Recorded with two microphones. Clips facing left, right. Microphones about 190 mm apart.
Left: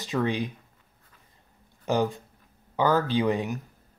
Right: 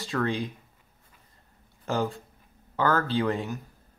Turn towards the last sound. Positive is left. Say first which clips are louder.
# left 2 dB
turn(degrees=15)  # may be behind; listen again after turning